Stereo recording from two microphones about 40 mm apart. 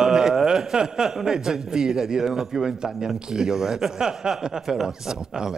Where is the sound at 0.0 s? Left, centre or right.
Centre.